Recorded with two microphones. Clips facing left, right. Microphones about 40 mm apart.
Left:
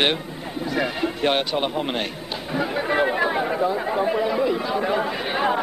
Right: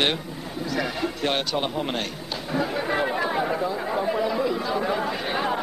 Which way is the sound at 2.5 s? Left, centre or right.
Centre.